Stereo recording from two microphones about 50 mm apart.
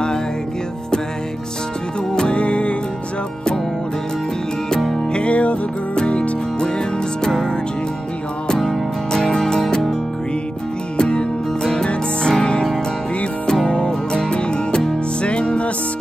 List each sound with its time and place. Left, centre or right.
2.1 s music: centre
4.9 s music: left
7.2 s music: centre
8.5 s music: centre
11.0 s music: centre